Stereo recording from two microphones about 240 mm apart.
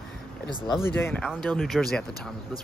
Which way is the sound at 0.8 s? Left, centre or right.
Centre.